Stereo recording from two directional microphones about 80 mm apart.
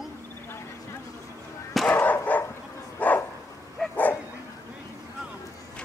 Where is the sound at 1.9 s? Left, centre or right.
Centre.